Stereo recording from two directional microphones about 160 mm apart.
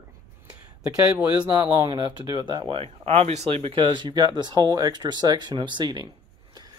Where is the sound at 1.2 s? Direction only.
25° right (ahead or behind).